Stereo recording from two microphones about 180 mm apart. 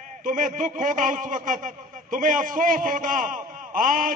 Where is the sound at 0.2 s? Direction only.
45° right (ahead or behind).